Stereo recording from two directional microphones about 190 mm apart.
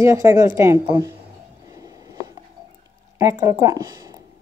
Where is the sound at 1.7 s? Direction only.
20° right (ahead or behind).